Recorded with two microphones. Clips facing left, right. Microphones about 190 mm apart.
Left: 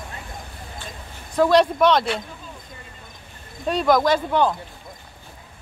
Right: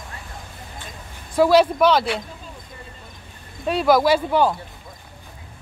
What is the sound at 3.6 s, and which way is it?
Speech, 5° right (ahead or behind).